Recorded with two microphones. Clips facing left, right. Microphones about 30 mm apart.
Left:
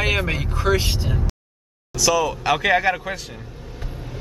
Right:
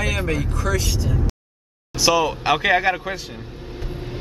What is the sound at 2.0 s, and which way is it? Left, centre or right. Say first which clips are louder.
A man's voice: right 1 dB; right.